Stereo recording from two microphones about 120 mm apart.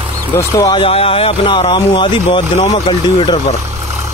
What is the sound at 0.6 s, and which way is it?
Speech, 40° left (ahead or behind).